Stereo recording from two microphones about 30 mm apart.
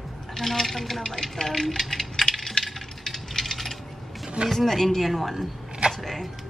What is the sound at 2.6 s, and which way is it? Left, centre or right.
Coin, centre.